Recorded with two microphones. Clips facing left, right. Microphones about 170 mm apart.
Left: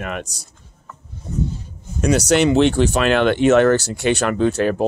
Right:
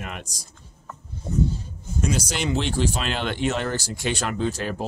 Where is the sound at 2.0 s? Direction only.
70° left (ahead or behind).